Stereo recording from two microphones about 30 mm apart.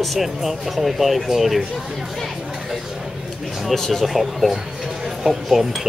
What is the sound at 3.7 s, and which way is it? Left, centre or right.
Speech, centre.